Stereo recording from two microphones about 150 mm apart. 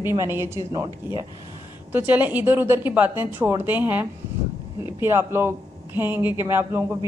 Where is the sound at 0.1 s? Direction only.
15° right (ahead or behind).